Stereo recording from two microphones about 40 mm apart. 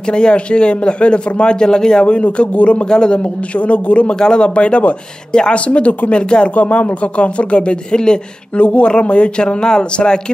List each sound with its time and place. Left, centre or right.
0.0 s speech: left
2.0 s speech: left
2.9 s speech: left
3.5 s speech: left
5.7 s speech: left
6.5 s speech: left